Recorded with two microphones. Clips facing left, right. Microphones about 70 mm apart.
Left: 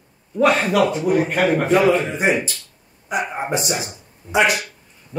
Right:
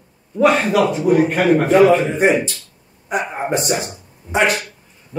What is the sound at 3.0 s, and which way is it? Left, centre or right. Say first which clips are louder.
A man's voice: right 2 dB; right.